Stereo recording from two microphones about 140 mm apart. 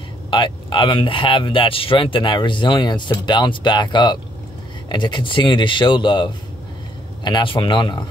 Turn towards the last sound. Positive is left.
turn(degrees=35)  # may be behind; listen again after turning